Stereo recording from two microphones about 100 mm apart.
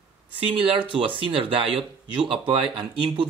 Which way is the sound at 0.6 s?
60° right (ahead or behind).